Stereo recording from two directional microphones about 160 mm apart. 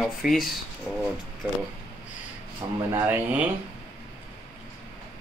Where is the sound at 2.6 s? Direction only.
20° right (ahead or behind).